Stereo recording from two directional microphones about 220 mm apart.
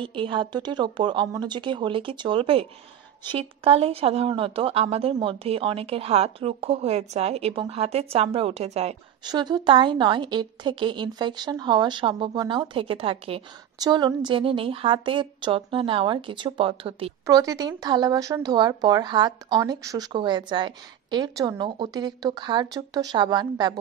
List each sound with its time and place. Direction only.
0.0 s a woman's voice: 25° right (ahead or behind)